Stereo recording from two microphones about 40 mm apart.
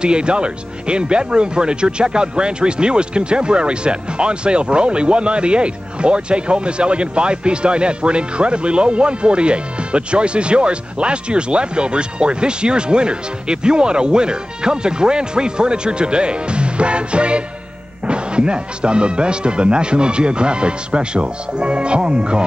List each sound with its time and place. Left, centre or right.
0.0 s speech: right